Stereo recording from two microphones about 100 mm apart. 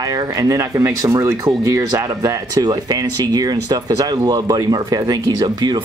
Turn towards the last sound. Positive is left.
turn(degrees=-45)  # may be behind; listen again after turning